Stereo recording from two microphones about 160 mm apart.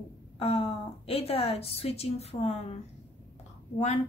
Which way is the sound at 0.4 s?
40° left (ahead or behind).